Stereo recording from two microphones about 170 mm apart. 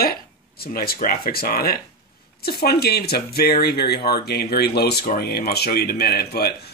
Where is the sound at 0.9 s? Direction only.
60° left (ahead or behind).